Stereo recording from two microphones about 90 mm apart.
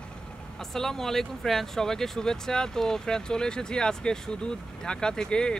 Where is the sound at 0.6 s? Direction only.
5° left (ahead or behind).